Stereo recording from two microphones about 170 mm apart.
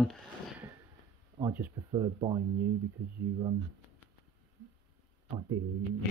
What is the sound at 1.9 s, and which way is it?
Speech, 30° right (ahead or behind).